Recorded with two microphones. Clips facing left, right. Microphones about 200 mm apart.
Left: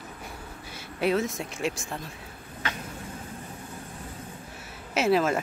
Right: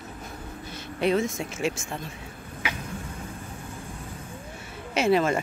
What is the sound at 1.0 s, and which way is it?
Speech, centre (ahead or behind).